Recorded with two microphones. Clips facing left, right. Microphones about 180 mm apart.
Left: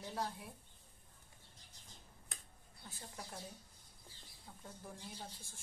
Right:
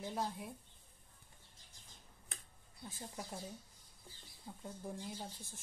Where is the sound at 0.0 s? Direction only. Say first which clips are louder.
Right 2 dB; 20° right (ahead or behind).